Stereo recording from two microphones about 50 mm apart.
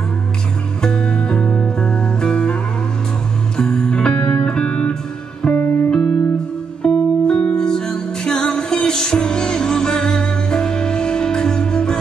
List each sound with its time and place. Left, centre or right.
0.8 s music: centre
3.5 s music: centre